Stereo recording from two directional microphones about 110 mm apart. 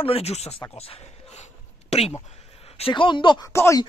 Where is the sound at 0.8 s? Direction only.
65° left (ahead or behind).